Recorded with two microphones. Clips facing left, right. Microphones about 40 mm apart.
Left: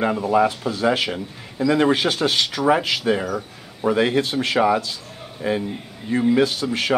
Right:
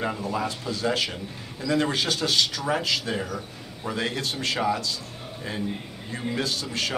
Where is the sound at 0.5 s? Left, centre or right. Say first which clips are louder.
Left 6 dB; left.